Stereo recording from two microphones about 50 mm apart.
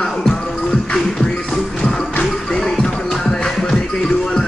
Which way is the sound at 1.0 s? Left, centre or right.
Centre.